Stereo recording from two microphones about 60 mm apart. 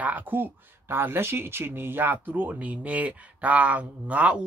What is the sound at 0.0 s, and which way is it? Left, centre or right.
Speech, right.